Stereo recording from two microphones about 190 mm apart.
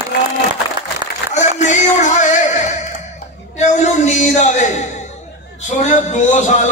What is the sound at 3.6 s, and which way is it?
A man's voice, 35° left (ahead or behind).